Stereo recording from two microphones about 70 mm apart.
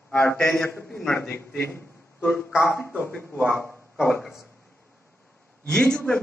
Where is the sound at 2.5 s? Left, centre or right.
Centre.